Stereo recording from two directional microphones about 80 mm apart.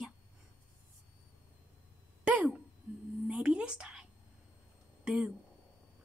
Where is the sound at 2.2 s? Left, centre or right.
Centre.